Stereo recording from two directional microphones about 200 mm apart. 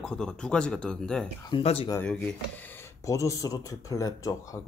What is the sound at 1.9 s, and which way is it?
Speech, 10° left (ahead or behind).